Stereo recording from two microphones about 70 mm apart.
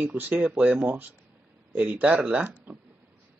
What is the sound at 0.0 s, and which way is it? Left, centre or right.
Speech, right.